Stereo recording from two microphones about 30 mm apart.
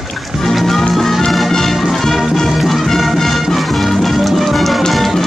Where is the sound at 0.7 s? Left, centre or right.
Centre.